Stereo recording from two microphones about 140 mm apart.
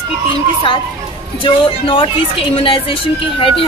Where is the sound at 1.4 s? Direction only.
40° left (ahead or behind).